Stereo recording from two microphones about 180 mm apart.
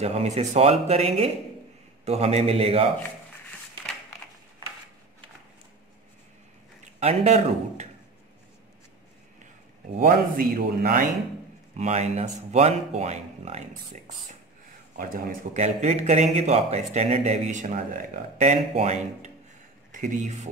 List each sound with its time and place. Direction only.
0.0 s speech: 35° right (ahead or behind)
7.0 s speech: 35° right (ahead or behind)
9.9 s a man's voice: 50° right (ahead or behind)
11.7 s speech: 40° right (ahead or behind)
15.0 s speech: 50° right (ahead or behind)